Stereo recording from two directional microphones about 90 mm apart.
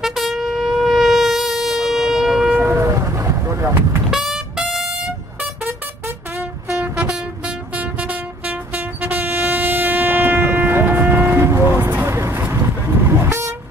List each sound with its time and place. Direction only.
0.0 s shofar: 5° right (ahead or behind)
2.5 s train: 25° right (ahead or behind)
4.1 s music: 5° right (ahead or behind)
5.6 s music: 25° right (ahead or behind)
6.8 s music: 10° right (ahead or behind)
13.2 s vehicle: 30° right (ahead or behind)